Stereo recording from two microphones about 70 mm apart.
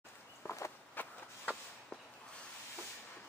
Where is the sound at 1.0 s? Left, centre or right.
Left.